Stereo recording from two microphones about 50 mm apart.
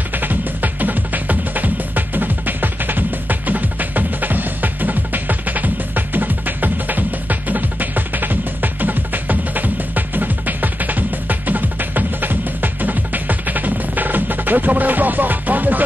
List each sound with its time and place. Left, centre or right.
0.1 s music: right